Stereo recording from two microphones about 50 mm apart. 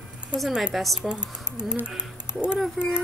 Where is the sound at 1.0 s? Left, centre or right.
Centre.